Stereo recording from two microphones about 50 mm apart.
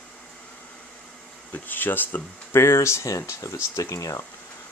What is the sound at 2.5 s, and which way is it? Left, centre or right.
Speech, left.